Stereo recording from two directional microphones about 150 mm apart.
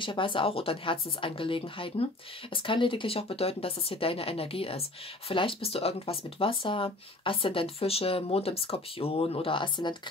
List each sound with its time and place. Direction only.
0.0 s speech: 35° left (ahead or behind)